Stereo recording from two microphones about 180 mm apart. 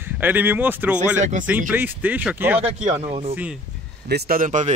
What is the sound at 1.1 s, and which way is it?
Speech, 45° right (ahead or behind).